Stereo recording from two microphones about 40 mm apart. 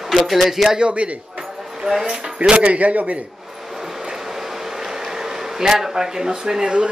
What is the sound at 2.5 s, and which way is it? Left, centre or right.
Speech, right.